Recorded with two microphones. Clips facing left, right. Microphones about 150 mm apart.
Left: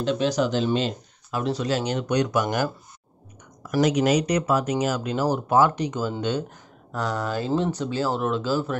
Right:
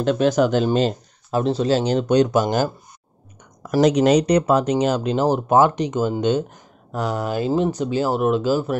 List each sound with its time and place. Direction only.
0.0 s speech: 50° right (ahead or behind)
0.7 s speech: 40° right (ahead or behind); by 8.7 s 15° right (ahead or behind)